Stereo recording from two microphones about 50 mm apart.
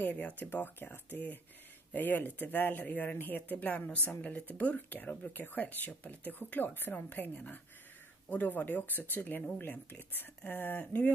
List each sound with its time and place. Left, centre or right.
0.0 s speech: left
7.1 s speech: left